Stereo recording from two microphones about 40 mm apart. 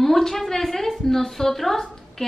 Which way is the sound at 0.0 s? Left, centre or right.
Centre.